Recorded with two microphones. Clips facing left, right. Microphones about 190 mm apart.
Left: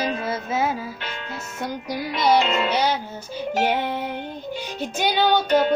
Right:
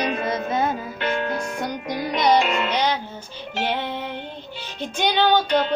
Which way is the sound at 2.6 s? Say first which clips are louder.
Left 1 dB; 10° left (ahead or behind).